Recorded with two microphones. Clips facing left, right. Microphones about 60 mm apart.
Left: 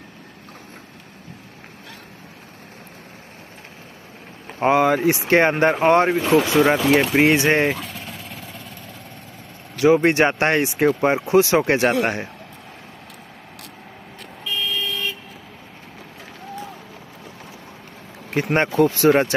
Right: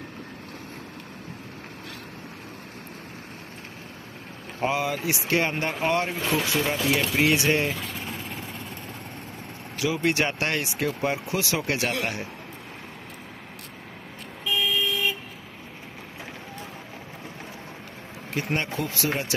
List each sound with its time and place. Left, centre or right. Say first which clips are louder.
4.6 s speech: left 9 dB; left
8.0 s vehicle: right 1 dB; right
8.3 s vehicle: right 1 dB; centre
9.8 s speech: left 9 dB; left
14.4 s vehicle: even; centre
18.3 s speech: left 8 dB; left